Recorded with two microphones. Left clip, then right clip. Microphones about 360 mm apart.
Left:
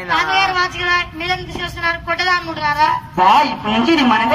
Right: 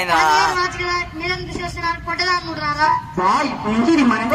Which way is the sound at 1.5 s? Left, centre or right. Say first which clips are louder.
Left 3 dB; centre.